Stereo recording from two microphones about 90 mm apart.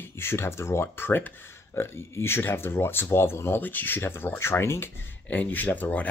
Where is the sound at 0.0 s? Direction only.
25° left (ahead or behind).